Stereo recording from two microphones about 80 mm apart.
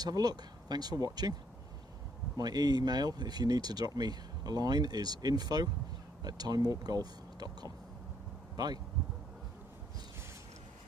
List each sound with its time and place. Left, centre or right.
0.0 s speech: right
2.3 s speech: right